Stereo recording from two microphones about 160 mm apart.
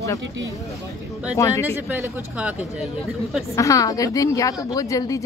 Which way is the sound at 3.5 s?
20° left (ahead or behind).